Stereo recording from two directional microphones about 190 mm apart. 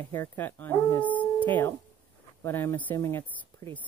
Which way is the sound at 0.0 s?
10° left (ahead or behind).